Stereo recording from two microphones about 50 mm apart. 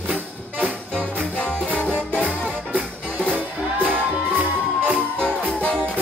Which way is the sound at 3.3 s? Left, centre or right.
Right.